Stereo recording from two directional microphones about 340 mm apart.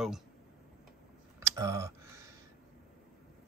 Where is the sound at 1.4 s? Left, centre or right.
Centre.